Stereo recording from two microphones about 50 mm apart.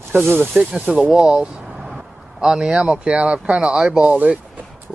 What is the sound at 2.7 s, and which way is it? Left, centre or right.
Speech, right.